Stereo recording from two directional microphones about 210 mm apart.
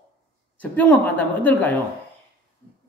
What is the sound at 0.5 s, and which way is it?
Speech, 5° left (ahead or behind).